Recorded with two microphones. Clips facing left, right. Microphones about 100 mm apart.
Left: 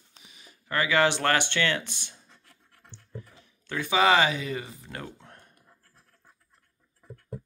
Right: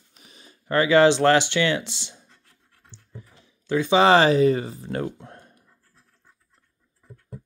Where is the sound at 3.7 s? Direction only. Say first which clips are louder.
Right 6 dB; 20° right (ahead or behind).